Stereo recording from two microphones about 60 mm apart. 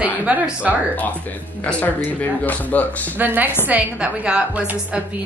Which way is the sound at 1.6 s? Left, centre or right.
Left.